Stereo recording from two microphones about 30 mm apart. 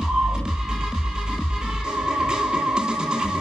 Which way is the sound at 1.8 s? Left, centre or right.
Right.